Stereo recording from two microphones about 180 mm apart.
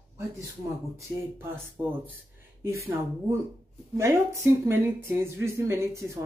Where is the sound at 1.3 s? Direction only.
10° right (ahead or behind).